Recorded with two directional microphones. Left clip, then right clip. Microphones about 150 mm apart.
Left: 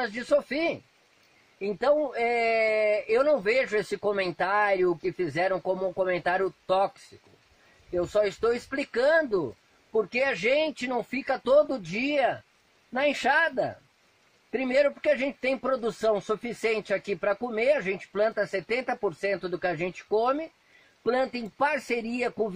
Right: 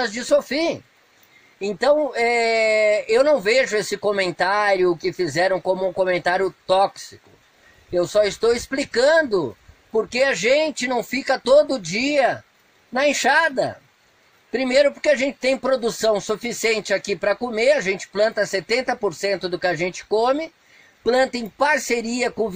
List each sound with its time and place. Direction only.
0.0 s speech: 15° right (ahead or behind)
7.9 s speech: 10° right (ahead or behind)